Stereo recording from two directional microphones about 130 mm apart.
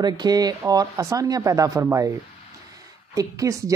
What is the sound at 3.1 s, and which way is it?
Speech, 25° right (ahead or behind).